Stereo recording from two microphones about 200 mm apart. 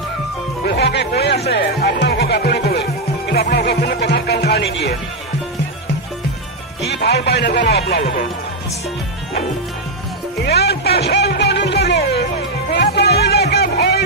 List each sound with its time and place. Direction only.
0.7 s music: 55° left (ahead or behind)
6.8 s speech: 55° left (ahead or behind)
10.4 s music: 55° left (ahead or behind)